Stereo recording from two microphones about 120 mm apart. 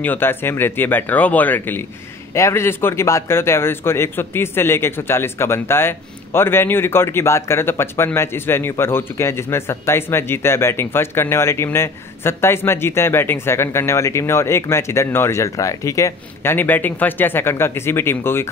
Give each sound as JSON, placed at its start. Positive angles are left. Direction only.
{"t": 0.0, "sound": "speech", "side_deg": 15}
{"t": 16.5, "sound": "speech", "side_deg": 15}